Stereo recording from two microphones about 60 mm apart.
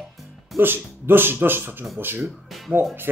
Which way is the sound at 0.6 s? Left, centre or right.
Right.